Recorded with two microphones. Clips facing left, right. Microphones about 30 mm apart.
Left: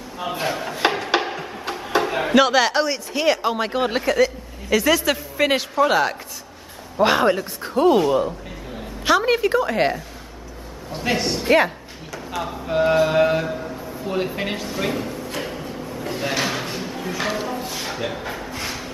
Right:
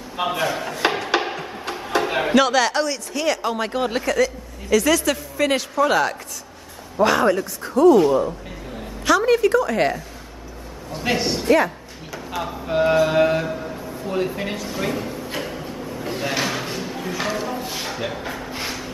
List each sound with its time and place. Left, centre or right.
0.2 s speech: right
0.8 s a sound: centre
1.2 s music: centre
2.0 s a sound: centre
2.3 s speech: centre
7.0 s speech: left
9.0 s speech: left
11.0 s speech: centre
11.4 s speech: left
12.1 s mantra: centre
14.0 s speech: centre
14.7 s a man's voice: centre
15.4 s a sound: centre